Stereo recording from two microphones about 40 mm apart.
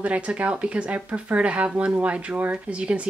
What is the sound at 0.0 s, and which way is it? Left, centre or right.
Speech, right.